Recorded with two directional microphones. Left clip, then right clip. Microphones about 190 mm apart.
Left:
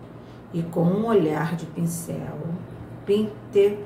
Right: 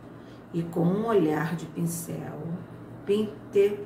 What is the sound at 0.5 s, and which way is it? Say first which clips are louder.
Speech: left 3 dB; centre (ahead or behind).